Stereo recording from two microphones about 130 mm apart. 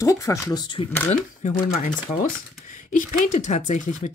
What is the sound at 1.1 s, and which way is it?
Speech, 80° left.